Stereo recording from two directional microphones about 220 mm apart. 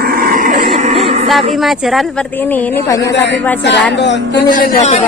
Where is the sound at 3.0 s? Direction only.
50° left (ahead or behind).